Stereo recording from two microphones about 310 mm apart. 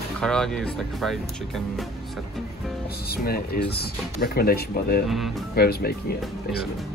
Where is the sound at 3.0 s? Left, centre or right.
Left.